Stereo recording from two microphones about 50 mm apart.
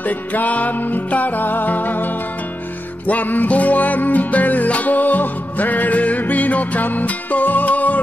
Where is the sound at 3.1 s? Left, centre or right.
Left.